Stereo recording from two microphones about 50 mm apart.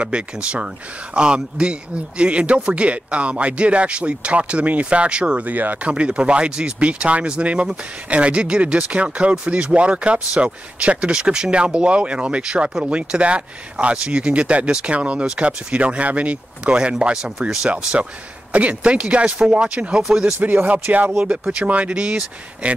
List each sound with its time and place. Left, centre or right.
0.0 s speech: right
5.4 s speech: right
5.9 s speech: right
18.5 s speech: right
20.3 s speech: right
21.2 s speech: centre